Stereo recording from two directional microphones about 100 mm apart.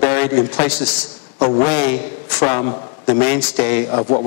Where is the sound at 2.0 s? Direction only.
25° left (ahead or behind).